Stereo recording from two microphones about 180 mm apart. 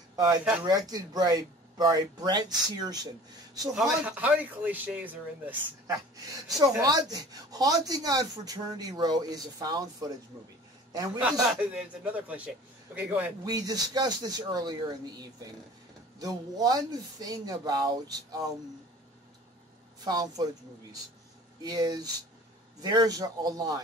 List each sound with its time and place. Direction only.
0.1 s a sound: 20° right (ahead or behind)
0.7 s speech: 20° right (ahead or behind)
3.7 s a man's voice: 5° right (ahead or behind)
5.9 s speech: 20° right (ahead or behind)
11.5 s a man's voice: 5° right (ahead or behind)
13.5 s speech: 20° right (ahead or behind)
20.1 s speech: 20° right (ahead or behind)